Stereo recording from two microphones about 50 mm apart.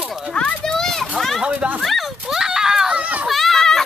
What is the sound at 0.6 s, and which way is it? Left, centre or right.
Speech, centre.